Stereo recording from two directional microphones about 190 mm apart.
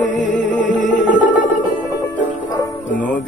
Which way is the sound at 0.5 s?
40° left (ahead or behind).